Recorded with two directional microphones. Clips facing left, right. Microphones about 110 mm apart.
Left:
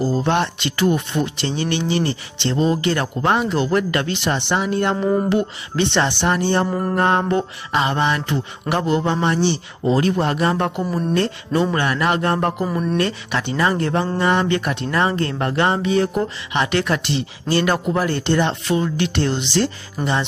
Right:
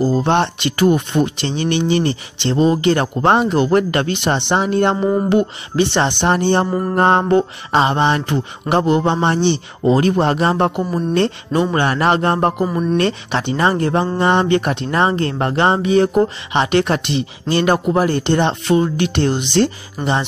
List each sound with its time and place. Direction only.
0.0 s speech: 20° right (ahead or behind)
3.4 s speech: 20° right (ahead or behind)
6.7 s mantra: 5° right (ahead or behind)
7.0 s speech: 25° right (ahead or behind)
19.4 s speech: 55° right (ahead or behind)
20.0 s mantra: centre (ahead or behind)